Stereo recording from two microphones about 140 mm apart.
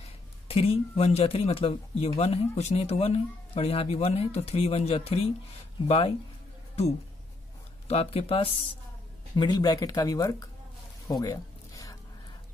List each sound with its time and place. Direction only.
0.0 s speech: 45° left (ahead or behind)
7.9 s speech: 45° left (ahead or behind)
9.3 s speech: 30° left (ahead or behind)
11.1 s music: 25° left (ahead or behind)